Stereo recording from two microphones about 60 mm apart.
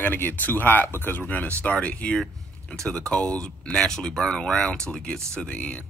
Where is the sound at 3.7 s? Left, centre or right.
Centre.